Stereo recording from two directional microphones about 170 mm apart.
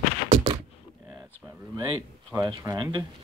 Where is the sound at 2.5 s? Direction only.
25° right (ahead or behind).